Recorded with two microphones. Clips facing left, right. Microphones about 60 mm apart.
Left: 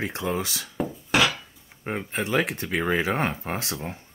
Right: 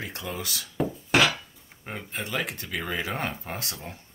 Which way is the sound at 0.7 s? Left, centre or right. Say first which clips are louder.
Even; centre.